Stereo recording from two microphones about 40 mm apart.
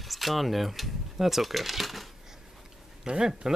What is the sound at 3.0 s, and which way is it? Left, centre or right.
Speech, centre.